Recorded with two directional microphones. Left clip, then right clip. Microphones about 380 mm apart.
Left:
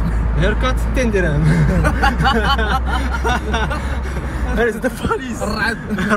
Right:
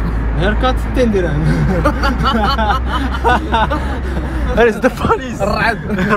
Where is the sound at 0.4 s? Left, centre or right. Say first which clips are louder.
Right 3 dB; centre.